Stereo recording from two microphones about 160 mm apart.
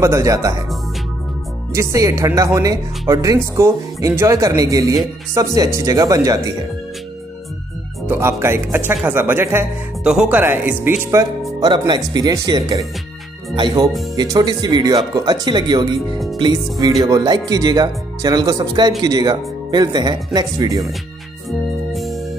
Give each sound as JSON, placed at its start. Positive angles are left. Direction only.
{"t": 0.0, "sound": "speech", "side_deg": -20}
{"t": 1.7, "sound": "speech", "side_deg": -20}
{"t": 8.1, "sound": "speech", "side_deg": -15}
{"t": 21.5, "sound": "music", "side_deg": 0}